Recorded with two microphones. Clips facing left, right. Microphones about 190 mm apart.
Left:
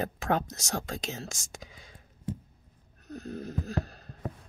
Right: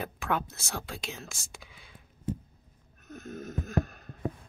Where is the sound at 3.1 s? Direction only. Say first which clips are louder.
Left 2 dB; 35° left (ahead or behind).